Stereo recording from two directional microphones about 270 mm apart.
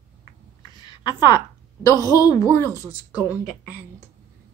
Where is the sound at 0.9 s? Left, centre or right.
Centre.